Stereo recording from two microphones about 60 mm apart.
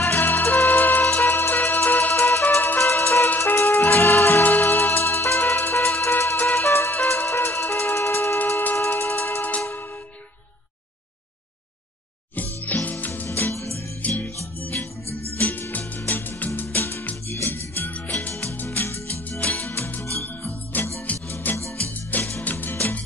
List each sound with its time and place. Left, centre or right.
0.0 s music: left
2.5 s ice cream truck: left
2.8 s music: left
8.5 s music: left
12.4 s music: left
13.5 s music: left
14.0 s music: left
15.3 s music: left
17.9 s music: left